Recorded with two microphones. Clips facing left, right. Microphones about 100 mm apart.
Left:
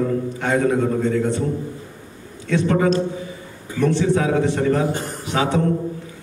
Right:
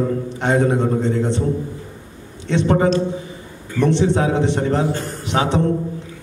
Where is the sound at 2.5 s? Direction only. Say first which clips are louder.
Right 1 dB; 25° right (ahead or behind).